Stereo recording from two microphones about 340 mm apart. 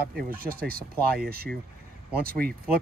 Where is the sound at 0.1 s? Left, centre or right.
Right.